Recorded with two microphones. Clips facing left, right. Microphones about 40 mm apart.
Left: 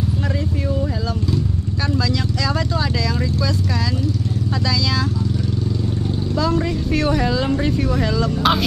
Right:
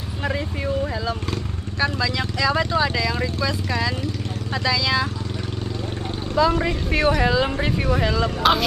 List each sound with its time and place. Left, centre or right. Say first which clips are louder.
1.8 s speech: even; right
6.3 s speech: right 2 dB; right
8.4 s speech: even; centre